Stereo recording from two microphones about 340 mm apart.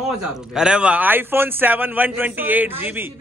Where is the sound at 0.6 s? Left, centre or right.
Centre.